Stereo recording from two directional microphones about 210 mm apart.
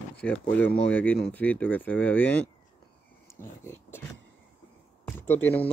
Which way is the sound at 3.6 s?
10° left (ahead or behind).